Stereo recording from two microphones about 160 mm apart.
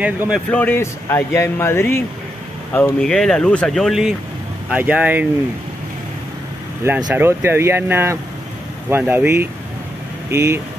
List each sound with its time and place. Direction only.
0.0 s speech: 10° right (ahead or behind)
0.5 s speech: 10° left (ahead or behind); by 5.2 s 10° right (ahead or behind)
7.2 s speech: 15° right (ahead or behind)